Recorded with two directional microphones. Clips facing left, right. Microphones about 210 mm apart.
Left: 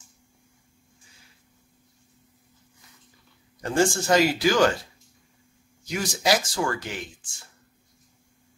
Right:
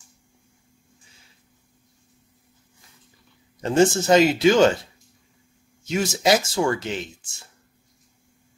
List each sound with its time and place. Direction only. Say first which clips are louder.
3.6 s speech: right 5 dB; 20° right (ahead or behind)
5.9 s speech: right 4 dB; 25° right (ahead or behind)